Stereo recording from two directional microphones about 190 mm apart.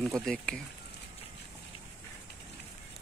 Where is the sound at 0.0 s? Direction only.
Centre (ahead or behind).